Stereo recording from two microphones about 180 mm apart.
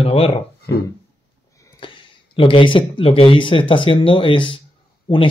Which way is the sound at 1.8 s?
25° left (ahead or behind).